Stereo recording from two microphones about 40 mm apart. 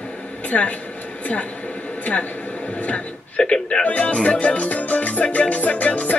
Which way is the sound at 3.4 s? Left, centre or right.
Left.